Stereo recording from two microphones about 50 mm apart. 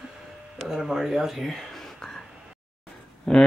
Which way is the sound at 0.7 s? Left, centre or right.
Centre.